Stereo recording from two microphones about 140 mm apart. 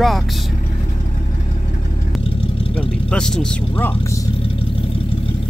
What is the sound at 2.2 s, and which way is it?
Vehicle, 40° left (ahead or behind).